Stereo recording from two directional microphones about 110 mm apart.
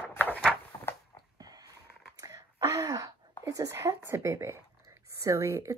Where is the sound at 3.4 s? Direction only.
30° right (ahead or behind).